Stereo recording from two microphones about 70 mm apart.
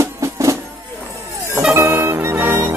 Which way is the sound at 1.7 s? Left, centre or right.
Right.